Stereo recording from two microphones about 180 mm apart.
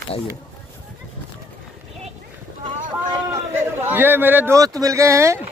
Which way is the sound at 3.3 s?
15° right (ahead or behind).